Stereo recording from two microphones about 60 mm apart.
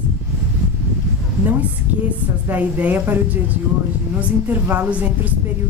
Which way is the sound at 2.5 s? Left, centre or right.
Right.